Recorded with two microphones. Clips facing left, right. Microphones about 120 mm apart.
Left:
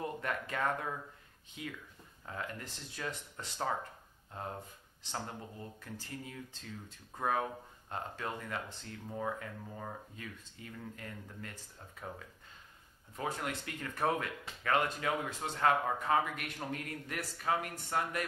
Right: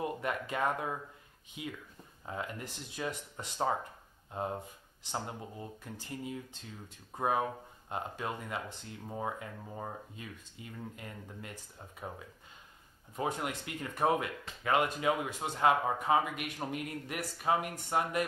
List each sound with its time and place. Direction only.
0.0 s speech: 15° right (ahead or behind)
13.1 s speech: 20° right (ahead or behind)